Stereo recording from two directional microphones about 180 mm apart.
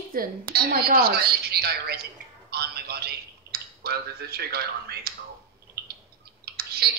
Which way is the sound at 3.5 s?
60° right (ahead or behind).